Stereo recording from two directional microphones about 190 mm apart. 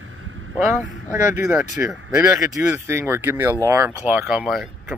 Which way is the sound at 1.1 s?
10° right (ahead or behind).